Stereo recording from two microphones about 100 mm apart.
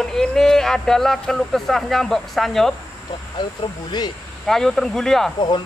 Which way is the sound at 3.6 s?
50° left (ahead or behind).